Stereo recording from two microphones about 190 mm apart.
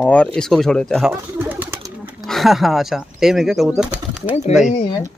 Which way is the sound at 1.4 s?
10° right (ahead or behind).